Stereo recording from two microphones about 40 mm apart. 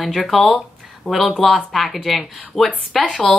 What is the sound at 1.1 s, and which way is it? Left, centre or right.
Speech, left.